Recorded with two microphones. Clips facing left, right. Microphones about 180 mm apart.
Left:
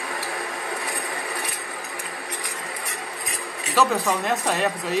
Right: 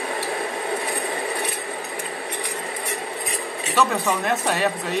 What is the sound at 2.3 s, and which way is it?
Cutlery, 20° right (ahead or behind).